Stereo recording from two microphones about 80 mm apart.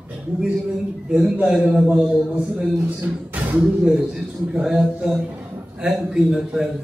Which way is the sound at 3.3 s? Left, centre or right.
Right.